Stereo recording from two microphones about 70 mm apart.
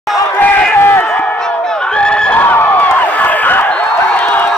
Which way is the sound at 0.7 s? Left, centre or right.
Left.